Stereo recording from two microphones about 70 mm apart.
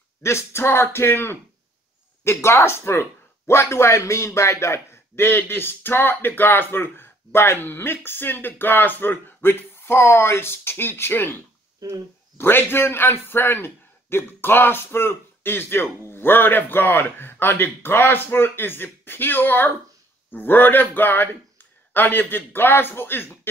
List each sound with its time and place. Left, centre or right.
0.2 s speech: left
12.4 s a man's voice: left